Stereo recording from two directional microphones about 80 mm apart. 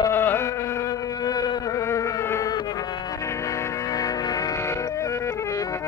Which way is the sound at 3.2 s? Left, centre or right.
Left.